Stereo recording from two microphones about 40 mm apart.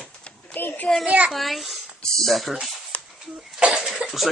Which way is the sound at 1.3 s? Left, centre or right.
Centre.